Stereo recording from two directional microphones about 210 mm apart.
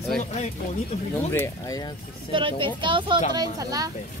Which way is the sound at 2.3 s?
25° right (ahead or behind).